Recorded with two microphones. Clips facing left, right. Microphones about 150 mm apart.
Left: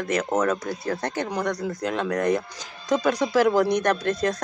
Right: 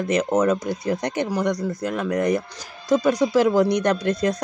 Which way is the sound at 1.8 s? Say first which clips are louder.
Even; 5° right (ahead or behind).